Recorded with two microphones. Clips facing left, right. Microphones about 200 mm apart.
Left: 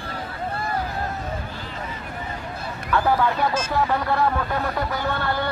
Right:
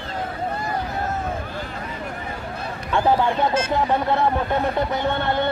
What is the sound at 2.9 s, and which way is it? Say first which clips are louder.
Speech: right 2 dB; 25° right (ahead or behind).